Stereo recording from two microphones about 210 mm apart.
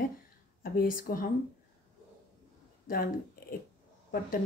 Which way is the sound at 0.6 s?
45° left (ahead or behind).